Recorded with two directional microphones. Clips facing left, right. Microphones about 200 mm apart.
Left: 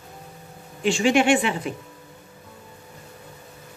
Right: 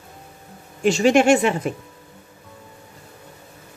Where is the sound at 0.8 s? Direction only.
40° right (ahead or behind).